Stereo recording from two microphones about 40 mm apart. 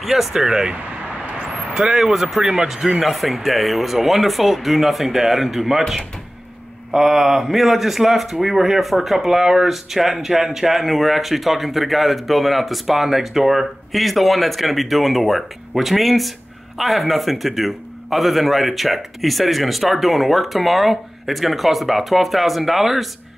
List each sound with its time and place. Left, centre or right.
0.0 s speech: centre
0.7 s vehicle: right
1.7 s a man's voice: centre